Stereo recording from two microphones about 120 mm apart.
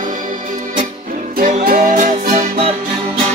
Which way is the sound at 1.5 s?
90° right.